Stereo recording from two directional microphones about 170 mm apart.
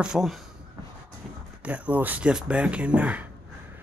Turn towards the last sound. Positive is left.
turn(degrees=-10)  # may be behind; listen again after turning